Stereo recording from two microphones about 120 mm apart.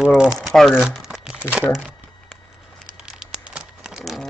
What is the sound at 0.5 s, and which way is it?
Crumpling, centre (ahead or behind).